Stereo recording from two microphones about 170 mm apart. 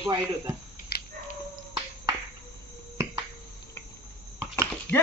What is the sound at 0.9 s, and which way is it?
Dog, 70° left (ahead or behind).